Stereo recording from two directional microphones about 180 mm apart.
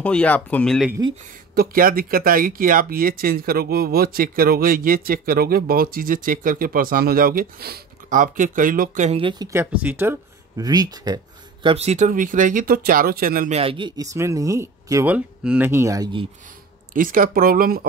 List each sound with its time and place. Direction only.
0.0 s speech: 5° left (ahead or behind)
1.5 s speech: 55° right (ahead or behind)
9.2 s speech: 25° right (ahead or behind)
10.6 s speech: 20° right (ahead or behind)
11.6 s speech: 35° right (ahead or behind); by 13.5 s 55° right (ahead or behind)
13.5 s speech: 30° right (ahead or behind)
14.1 s speech: 15° right (ahead or behind)
16.9 s speech: 50° right (ahead or behind)